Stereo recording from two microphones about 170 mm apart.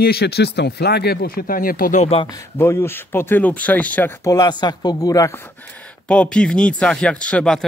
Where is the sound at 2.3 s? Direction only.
15° left (ahead or behind).